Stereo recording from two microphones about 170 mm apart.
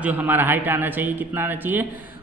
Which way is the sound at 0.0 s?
10° right (ahead or behind).